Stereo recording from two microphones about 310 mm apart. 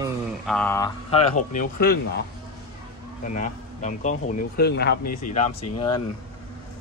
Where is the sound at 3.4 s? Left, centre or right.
Left.